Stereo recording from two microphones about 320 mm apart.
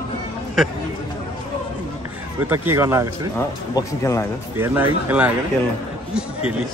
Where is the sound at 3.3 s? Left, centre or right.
Centre.